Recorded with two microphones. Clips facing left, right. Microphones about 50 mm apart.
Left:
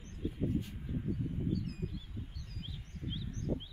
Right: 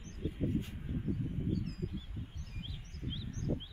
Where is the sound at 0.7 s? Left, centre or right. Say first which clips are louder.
Even; centre.